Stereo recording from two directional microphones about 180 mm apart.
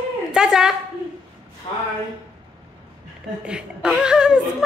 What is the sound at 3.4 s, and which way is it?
Speech, 5° right (ahead or behind).